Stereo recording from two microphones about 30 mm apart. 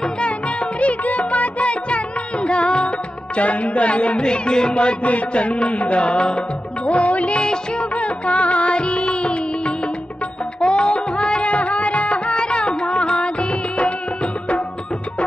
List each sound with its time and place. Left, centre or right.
0.0 s music: left
3.3 s music: left
4.2 s music: left
5.0 s music: left
6.9 s music: left
11.5 s music: left